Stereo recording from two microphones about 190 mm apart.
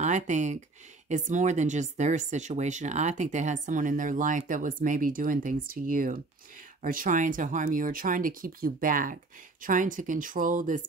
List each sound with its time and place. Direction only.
0.0 s speech: 40° right (ahead or behind)